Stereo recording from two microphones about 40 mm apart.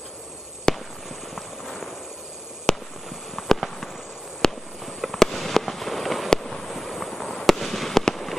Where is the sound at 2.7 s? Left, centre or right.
Centre.